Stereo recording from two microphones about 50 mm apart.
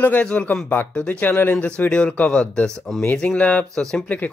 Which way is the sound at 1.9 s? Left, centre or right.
Left.